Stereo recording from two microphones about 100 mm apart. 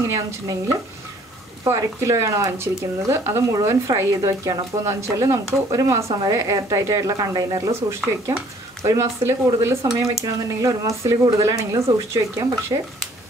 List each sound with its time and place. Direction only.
0.1 s speech: 35° right (ahead or behind)
8.8 s speech: 30° right (ahead or behind)